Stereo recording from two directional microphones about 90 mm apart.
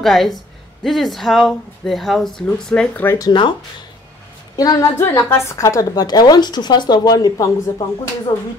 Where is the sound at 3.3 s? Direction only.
55° left (ahead or behind).